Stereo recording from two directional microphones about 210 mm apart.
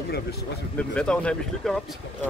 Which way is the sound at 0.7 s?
5° left (ahead or behind).